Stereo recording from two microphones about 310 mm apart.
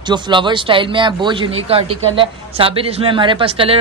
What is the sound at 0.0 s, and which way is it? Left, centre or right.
Speech, centre.